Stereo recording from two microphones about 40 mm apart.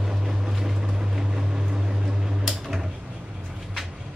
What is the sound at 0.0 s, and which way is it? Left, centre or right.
Vehicle, centre.